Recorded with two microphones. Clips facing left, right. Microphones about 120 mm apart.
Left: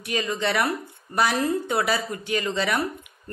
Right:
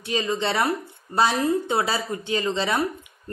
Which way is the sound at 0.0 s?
25° right (ahead or behind).